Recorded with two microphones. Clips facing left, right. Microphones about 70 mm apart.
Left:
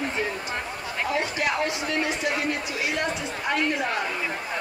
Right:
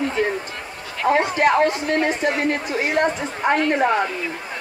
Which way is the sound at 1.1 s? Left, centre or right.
Right.